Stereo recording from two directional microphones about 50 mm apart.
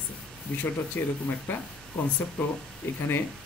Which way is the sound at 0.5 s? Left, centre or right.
Left.